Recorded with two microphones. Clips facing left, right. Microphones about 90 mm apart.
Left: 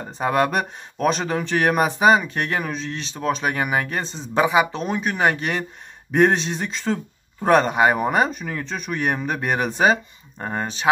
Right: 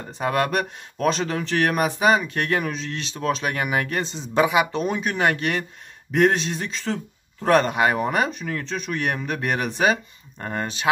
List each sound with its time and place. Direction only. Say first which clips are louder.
0.2 s a man's voice: left 2 dB; 25° left (ahead or behind)
0.9 s speech: left 1 dB; 10° left (ahead or behind)
1.6 s a man's voice: left 3 dB; 30° left (ahead or behind)
2.1 s a man's voice: left 1 dB; 15° left (ahead or behind)
10.4 s speech: left 1 dB; 15° left (ahead or behind)